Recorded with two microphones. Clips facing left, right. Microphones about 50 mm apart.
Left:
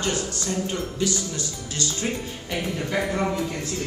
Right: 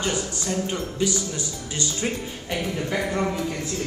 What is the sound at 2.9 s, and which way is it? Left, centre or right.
Speech, centre.